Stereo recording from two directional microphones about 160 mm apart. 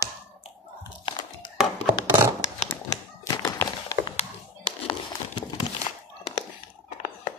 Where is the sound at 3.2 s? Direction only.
20° left (ahead or behind).